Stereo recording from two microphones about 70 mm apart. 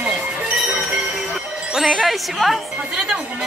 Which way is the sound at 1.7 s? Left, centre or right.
Centre.